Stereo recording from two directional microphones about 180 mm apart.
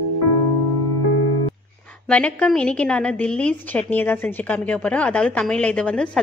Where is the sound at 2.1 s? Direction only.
5° left (ahead or behind).